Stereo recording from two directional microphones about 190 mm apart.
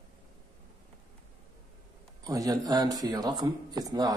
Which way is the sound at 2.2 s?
20° right (ahead or behind).